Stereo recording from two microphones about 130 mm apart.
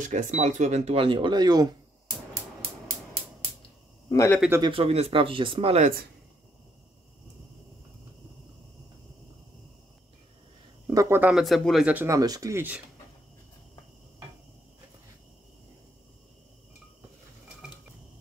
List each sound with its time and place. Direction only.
0.0 s speech: 70° right (ahead or behind); by 1.7 s 30° right (ahead or behind)
4.6 s speech: 45° right (ahead or behind)
10.9 s speech: 20° right (ahead or behind)
11.3 s speech: centre (ahead or behind)
11.9 s speech: 15° right (ahead or behind)